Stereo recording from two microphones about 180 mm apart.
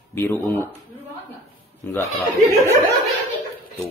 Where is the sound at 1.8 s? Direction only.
15° left (ahead or behind).